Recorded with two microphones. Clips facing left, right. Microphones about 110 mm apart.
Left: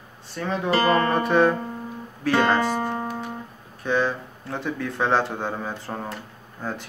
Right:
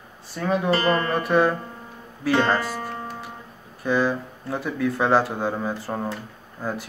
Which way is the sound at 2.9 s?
Centre (ahead or behind).